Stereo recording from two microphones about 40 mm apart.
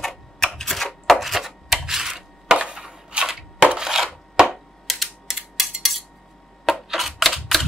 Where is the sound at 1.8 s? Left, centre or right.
Centre.